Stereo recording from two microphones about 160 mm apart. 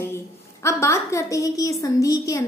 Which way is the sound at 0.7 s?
15° left (ahead or behind).